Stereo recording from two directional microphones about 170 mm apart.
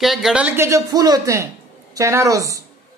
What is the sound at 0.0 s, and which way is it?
A woman's voice, centre (ahead or behind).